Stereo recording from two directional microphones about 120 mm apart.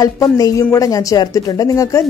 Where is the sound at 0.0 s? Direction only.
30° left (ahead or behind).